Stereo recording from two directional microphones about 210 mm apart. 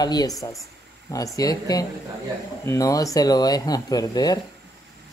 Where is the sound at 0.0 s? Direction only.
20° left (ahead or behind).